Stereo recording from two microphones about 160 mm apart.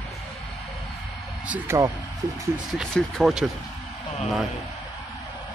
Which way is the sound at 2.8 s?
Centre (ahead or behind).